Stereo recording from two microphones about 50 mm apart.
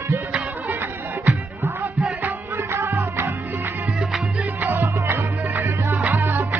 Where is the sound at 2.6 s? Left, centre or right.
Right.